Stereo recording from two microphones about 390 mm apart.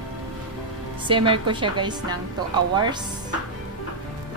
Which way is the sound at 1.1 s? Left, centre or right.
Centre.